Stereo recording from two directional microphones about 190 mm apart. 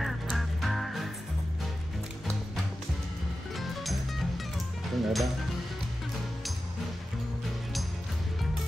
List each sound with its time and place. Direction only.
0.0 s music: centre (ahead or behind)
3.5 s music: centre (ahead or behind)
5.0 s speech: centre (ahead or behind)